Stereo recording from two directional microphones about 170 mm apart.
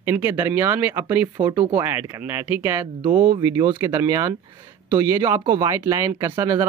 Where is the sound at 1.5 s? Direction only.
25° right (ahead or behind).